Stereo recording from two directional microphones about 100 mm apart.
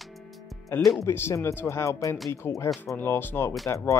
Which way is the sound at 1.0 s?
25° left (ahead or behind).